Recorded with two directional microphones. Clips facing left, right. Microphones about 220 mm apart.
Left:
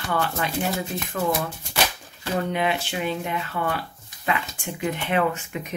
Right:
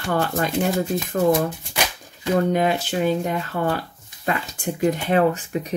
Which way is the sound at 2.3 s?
40° right (ahead or behind).